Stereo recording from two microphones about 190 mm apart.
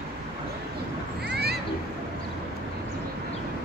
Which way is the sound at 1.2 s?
60° right (ahead or behind).